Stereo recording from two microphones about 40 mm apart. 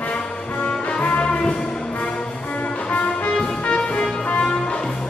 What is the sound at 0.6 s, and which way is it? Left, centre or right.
Music, left.